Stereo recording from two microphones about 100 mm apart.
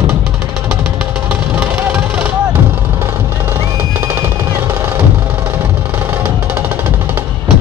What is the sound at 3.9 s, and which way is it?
Music, 25° right (ahead or behind).